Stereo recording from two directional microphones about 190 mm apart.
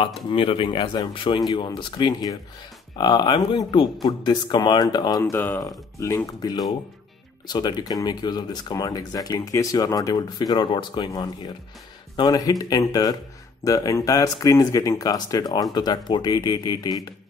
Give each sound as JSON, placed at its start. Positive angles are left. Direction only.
{"t": 0.0, "sound": "speech", "side_deg": 30}